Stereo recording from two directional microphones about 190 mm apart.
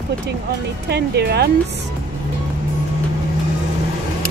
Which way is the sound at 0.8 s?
60° right (ahead or behind).